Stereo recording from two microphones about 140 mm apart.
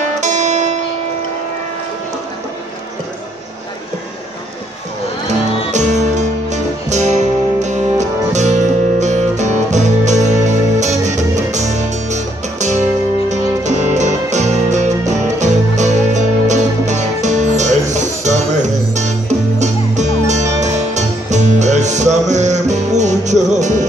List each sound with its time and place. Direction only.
0.2 s zither: 60° right (ahead or behind)
5.7 s music: 55° right (ahead or behind)